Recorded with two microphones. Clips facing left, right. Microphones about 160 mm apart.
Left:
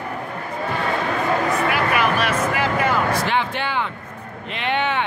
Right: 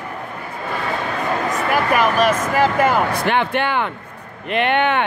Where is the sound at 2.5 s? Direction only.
45° right (ahead or behind).